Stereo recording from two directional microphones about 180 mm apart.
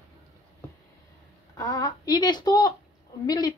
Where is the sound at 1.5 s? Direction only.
20° left (ahead or behind).